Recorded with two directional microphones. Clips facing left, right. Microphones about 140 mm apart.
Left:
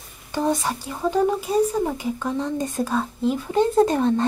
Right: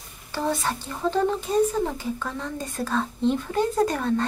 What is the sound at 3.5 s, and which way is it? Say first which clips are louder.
Speech: left 5 dB; 25° left (ahead or behind).